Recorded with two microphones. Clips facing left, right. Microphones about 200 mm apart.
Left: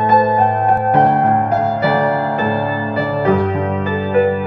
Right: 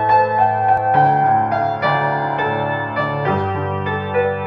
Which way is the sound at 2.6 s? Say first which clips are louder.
Left 3 dB; 30° left (ahead or behind).